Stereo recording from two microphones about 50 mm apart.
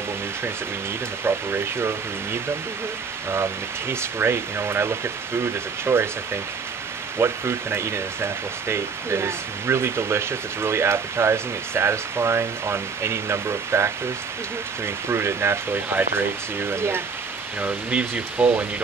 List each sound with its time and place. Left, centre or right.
1.2 s speech: right
15.0 s speech: right
17.6 s speech: right